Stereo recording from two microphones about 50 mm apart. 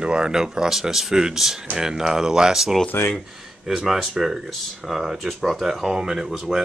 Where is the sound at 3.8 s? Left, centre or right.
Centre.